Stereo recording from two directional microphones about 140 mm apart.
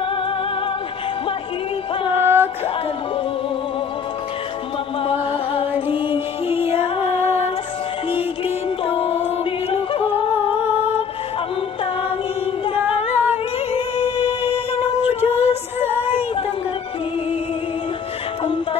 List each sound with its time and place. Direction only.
2.2 s female singing: 15° right (ahead or behind)
5.0 s music: 40° left (ahead or behind)
13.3 s music: 45° left (ahead or behind)
15.3 s female singing: 15° right (ahead or behind)
18.4 s music: 35° left (ahead or behind)